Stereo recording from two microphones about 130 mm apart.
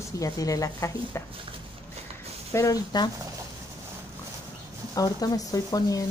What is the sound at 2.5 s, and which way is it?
Speech, 25° left (ahead or behind).